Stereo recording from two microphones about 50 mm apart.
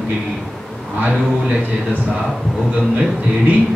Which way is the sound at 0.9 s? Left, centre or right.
Right.